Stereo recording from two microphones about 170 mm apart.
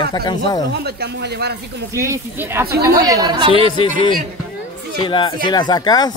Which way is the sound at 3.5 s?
30° left (ahead or behind).